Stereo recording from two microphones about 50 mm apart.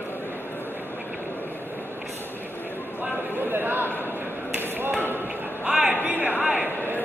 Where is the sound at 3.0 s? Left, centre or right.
Right.